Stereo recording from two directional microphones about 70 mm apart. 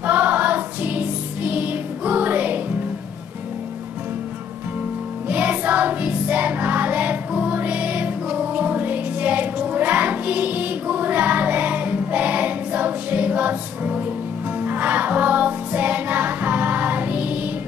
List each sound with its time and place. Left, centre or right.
0.0 s music: right
5.3 s music: right